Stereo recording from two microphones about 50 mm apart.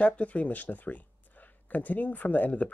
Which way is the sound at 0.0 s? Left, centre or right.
Left.